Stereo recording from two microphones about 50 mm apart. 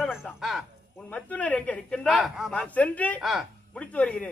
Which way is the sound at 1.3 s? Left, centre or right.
Left.